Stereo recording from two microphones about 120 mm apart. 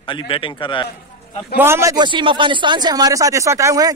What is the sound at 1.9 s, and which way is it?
Speech, 40° right (ahead or behind).